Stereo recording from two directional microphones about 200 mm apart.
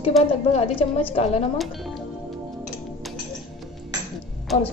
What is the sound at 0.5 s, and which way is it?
Speech, 30° left (ahead or behind).